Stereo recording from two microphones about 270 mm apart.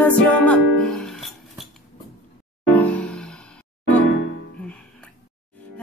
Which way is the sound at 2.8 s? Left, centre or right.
Centre.